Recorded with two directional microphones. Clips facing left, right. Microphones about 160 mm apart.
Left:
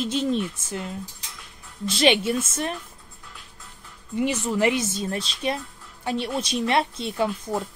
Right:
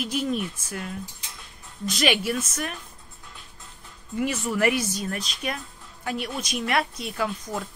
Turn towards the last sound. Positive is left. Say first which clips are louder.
# left 4 dB
turn(degrees=30)  # may be behind; listen again after turning